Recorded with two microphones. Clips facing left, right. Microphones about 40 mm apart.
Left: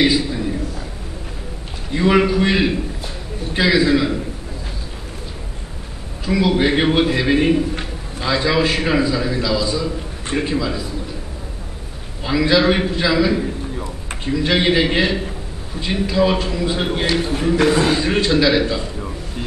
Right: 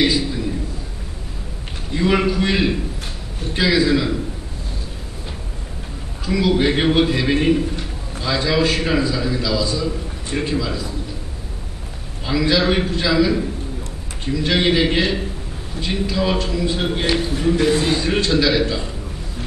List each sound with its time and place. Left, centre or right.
0.0 s a sound: centre
2.0 s a man's voice: centre
6.2 s a man's voice: centre
12.3 s a man's voice: centre
17.6 s a man's voice: left
17.9 s a man's voice: centre